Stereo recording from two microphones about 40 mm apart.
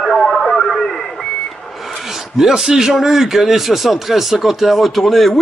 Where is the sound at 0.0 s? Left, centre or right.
Centre.